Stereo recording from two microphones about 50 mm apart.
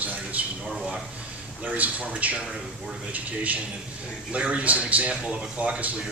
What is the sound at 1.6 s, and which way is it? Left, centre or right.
A man's voice, right.